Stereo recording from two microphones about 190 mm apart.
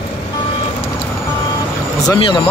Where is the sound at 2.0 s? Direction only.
25° left (ahead or behind).